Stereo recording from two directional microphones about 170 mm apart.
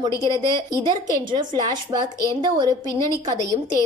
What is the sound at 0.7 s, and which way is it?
A woman's voice, 20° right (ahead or behind).